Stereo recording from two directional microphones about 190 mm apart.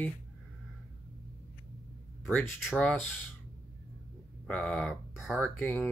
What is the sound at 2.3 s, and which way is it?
Speech, 5° left (ahead or behind).